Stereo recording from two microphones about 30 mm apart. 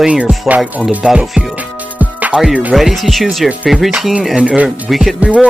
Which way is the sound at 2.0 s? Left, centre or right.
Right.